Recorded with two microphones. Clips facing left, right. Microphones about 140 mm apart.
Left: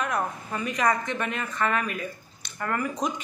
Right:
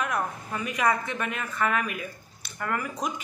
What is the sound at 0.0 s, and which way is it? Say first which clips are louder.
Speech: left 1 dB; centre (ahead or behind).